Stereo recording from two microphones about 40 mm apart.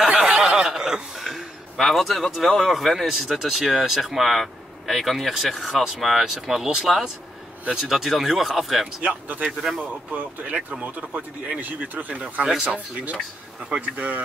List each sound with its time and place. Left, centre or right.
0.1 s snicker: right
0.4 s a sound: centre
1.2 s speech: centre
7.7 s speech: centre
9.0 s speech: right
9.6 s speech: centre
10.1 s speech: right